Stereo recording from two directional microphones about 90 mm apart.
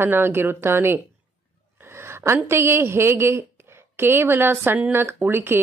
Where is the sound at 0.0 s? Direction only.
25° right (ahead or behind).